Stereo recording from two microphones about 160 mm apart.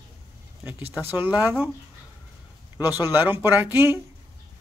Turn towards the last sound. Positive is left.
turn(degrees=-15)  # may be behind; listen again after turning